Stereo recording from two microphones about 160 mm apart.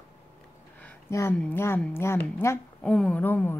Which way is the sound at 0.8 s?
15° left (ahead or behind).